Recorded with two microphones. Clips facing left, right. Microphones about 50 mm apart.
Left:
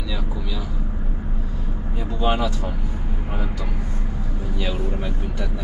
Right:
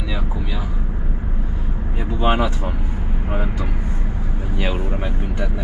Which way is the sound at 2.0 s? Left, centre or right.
Right.